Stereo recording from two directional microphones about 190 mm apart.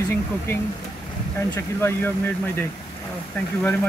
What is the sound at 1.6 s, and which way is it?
Speech, 15° left (ahead or behind).